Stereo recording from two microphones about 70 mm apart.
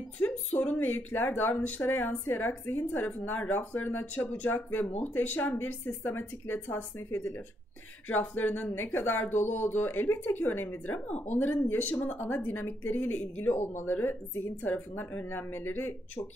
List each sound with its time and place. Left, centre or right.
0.2 s speech: centre; by 7.4 s left
8.1 s speech: left